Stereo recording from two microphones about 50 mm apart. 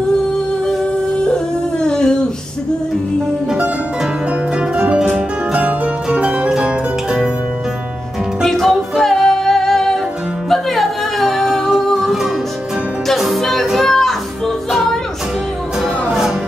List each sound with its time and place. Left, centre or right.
1.1 s a sound: centre
4.6 s music: centre
6.1 s zither: right
6.5 s music: centre
8.5 s music: centre
15.8 s music: centre